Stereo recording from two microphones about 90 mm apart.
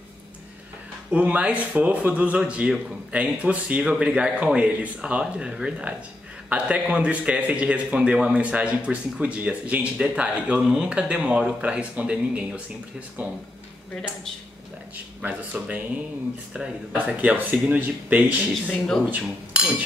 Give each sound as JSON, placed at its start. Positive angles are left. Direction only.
{"t": 1.1, "sound": "speech", "side_deg": -15}
{"t": 15.2, "sound": "speech", "side_deg": -15}
{"t": 19.0, "sound": "cutlery", "side_deg": -15}